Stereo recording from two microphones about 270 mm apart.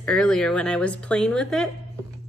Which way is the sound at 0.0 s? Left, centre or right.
Centre.